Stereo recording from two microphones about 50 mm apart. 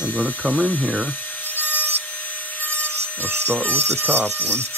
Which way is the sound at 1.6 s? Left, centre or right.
Left.